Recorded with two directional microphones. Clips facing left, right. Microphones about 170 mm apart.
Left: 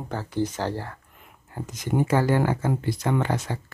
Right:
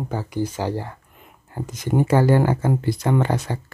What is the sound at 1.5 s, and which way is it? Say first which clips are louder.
Speech: right 4 dB; 35° right (ahead or behind).